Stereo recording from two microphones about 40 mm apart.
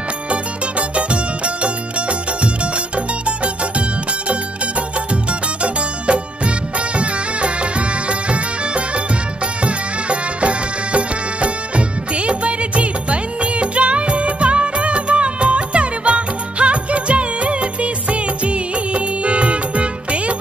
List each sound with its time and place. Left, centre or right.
0.3 s music: right
5.1 s music: right
8.1 s music: right